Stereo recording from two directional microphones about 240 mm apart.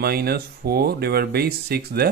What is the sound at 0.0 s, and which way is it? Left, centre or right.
Speech, right.